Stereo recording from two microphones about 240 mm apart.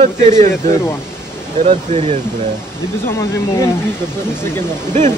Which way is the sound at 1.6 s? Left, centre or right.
Right.